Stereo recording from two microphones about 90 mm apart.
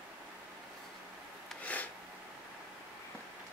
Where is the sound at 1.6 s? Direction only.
15° left (ahead or behind).